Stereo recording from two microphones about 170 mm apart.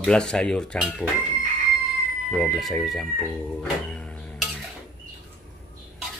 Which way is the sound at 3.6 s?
5° left (ahead or behind).